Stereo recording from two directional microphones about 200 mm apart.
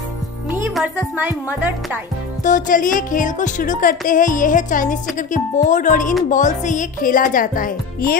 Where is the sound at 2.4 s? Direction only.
40° left (ahead or behind).